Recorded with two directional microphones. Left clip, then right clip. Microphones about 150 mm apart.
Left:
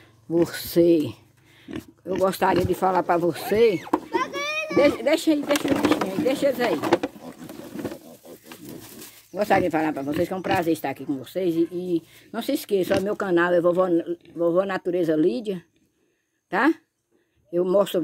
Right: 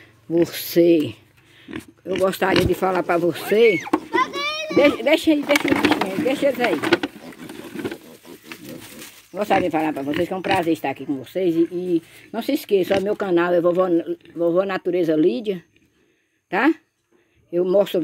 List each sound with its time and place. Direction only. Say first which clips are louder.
0.3 s speech: right 3 dB; 5° left (ahead or behind)
1.8 s speech: right 3 dB; 20° left (ahead or behind)
2.2 s speech: right 2 dB; centre (ahead or behind)
3.8 s a sound: right 3 dB; 65° right (ahead or behind)
4.7 s speech: right 3 dB; 20° right (ahead or behind)
9.3 s speech: right 1 dB; 10° left (ahead or behind)